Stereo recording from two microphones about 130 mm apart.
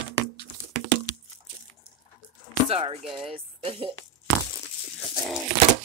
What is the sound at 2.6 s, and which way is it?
Speech, 50° right (ahead or behind).